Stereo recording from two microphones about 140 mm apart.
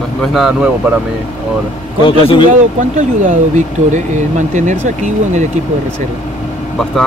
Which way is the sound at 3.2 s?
65° right (ahead or behind).